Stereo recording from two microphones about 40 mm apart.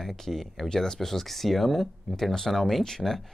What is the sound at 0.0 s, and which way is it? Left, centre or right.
Speech, centre.